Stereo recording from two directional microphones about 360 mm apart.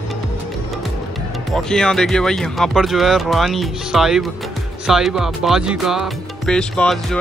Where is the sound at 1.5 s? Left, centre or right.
Centre.